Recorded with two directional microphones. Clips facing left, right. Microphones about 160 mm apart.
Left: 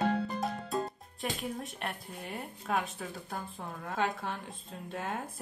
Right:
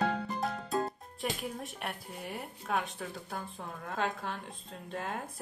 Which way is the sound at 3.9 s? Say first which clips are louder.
Left 2 dB; centre (ahead or behind).